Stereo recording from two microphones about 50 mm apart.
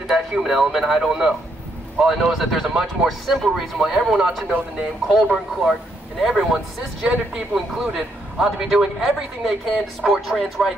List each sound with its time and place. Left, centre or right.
0.1 s a man's voice: centre